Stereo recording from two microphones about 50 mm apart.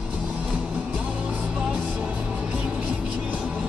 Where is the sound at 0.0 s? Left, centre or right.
Centre.